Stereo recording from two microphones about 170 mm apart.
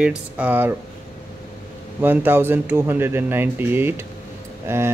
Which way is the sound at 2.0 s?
10° right (ahead or behind).